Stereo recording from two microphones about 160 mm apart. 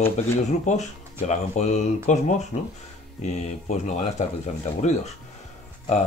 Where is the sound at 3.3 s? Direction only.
50° left (ahead or behind).